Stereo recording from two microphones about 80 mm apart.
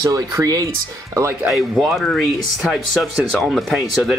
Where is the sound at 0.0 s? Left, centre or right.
Right.